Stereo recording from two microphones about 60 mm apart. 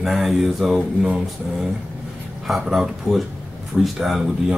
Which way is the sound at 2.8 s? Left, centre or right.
Centre.